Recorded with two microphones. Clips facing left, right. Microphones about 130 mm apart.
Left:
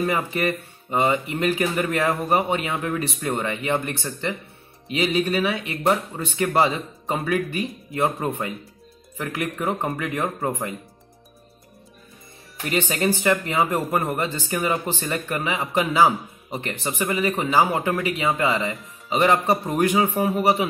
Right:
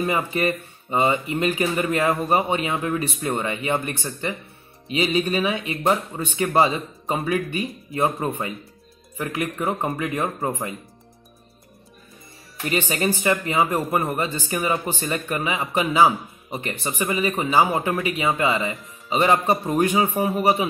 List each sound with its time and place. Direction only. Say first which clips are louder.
0.0 s speech: right 1 dB; 15° right (ahead or behind)
12.7 s speech: left 1 dB; 10° right (ahead or behind)
19.5 s a man's voice: right 1 dB; centre (ahead or behind)
19.8 s speech: left 1 dB; 15° right (ahead or behind)